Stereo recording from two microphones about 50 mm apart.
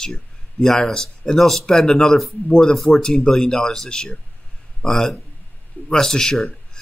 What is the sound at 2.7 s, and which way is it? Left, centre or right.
Speech, centre.